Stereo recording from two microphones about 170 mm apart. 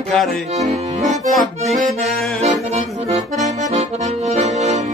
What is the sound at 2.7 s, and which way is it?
Accordion, 40° right (ahead or behind).